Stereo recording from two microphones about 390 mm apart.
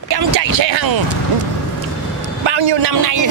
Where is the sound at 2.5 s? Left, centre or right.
Right.